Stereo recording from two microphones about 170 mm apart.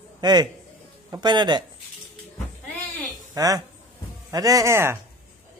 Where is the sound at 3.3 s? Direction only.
20° right (ahead or behind).